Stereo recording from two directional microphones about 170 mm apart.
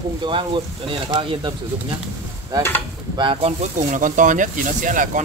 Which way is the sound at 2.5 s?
20° right (ahead or behind).